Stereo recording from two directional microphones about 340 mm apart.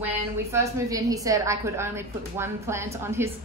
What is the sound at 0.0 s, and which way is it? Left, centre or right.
A woman's voice, centre.